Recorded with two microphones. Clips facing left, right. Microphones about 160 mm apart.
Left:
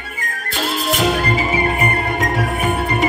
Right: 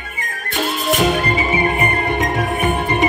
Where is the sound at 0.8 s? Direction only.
20° right (ahead or behind).